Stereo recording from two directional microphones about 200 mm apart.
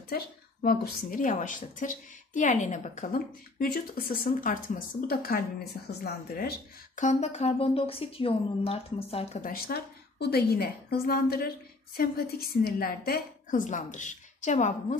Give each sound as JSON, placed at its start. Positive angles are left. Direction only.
{"t": 0.1, "sound": "a woman's voice", "side_deg": 45}
{"t": 3.5, "sound": "speech", "side_deg": 50}
{"t": 7.1, "sound": "speech", "side_deg": 35}
{"t": 9.5, "sound": "speech", "side_deg": 50}